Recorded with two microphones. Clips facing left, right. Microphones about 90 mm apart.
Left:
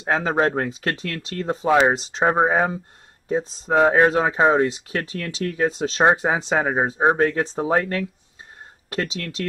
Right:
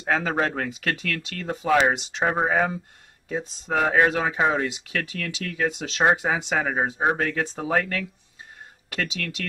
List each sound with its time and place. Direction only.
0.0 s speech: 30° left (ahead or behind)